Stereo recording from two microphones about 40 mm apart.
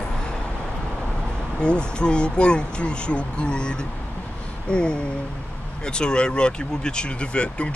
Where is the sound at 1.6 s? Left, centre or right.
Left.